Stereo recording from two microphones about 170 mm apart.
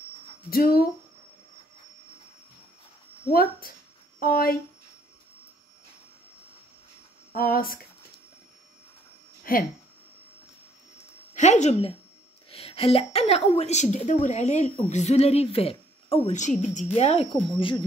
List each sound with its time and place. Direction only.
0.5 s speech: 60° left (ahead or behind)
3.3 s speech: 60° left (ahead or behind)
7.3 s speech: 60° left (ahead or behind)
9.4 s a sound: 60° left (ahead or behind)
11.3 s a woman's voice: 45° left (ahead or behind)